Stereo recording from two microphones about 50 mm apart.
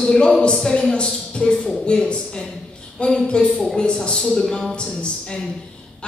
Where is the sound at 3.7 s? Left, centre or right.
Centre.